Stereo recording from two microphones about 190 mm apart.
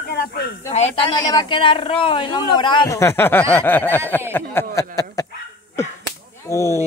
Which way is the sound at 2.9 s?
15° left (ahead or behind).